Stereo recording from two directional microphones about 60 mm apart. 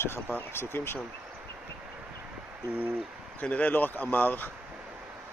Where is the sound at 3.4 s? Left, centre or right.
Left.